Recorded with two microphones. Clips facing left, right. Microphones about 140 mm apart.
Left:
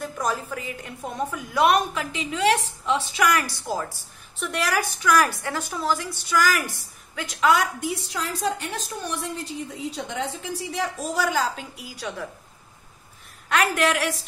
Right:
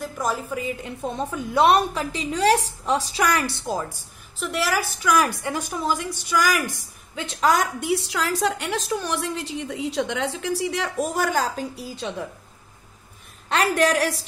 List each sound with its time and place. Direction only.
0.0 s music: centre (ahead or behind)
0.5 s a woman's voice: 15° right (ahead or behind)
4.4 s a woman's voice: 5° right (ahead or behind)
5.1 s a woman's voice: 15° right (ahead or behind)
7.3 s a woman's voice: 40° right (ahead or behind)
7.8 s a woman's voice: 80° right
11.1 s a woman's voice: 50° right (ahead or behind)
11.7 s a woman's voice: 30° right (ahead or behind)
13.5 s a woman's voice: 35° right (ahead or behind)